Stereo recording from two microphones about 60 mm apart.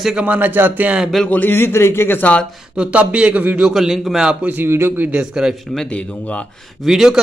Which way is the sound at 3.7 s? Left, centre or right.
Centre.